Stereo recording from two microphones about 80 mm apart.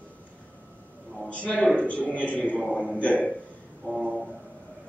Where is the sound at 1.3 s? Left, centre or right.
Centre.